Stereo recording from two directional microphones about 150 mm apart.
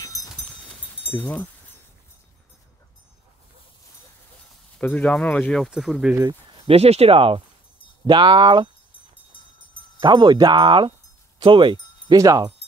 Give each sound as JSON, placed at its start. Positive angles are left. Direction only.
{"t": 0.0, "sound": "livestock", "side_deg": 20}
{"t": 1.1, "sound": "speech", "side_deg": 10}
{"t": 4.7, "sound": "speech", "side_deg": 5}
{"t": 6.7, "sound": "speech", "side_deg": -45}
{"t": 9.9, "sound": "speech", "side_deg": -25}